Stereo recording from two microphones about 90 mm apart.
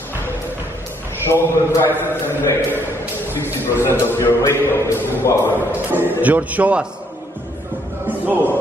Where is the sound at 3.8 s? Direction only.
25° left (ahead or behind).